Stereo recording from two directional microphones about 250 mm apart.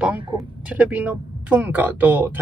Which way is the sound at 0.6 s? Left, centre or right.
Centre.